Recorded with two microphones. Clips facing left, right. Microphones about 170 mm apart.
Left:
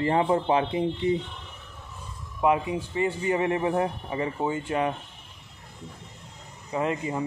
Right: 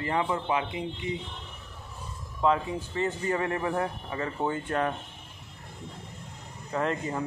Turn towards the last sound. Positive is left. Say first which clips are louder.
# left 2 dB
turn(degrees=5)  # may be behind; listen again after turning